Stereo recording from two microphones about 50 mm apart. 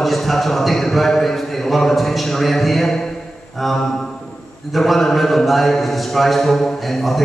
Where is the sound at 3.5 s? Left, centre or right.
Centre.